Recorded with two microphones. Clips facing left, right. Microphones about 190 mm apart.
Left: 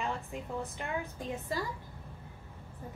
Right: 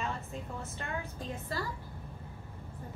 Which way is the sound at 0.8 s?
15° left (ahead or behind).